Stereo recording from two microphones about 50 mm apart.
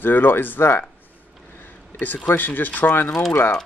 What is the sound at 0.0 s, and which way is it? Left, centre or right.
Speech, left.